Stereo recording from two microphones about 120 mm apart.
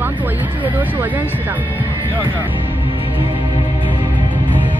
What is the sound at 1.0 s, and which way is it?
Speech, 15° right (ahead or behind).